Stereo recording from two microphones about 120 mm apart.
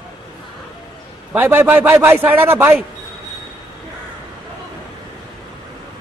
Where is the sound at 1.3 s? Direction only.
15° right (ahead or behind).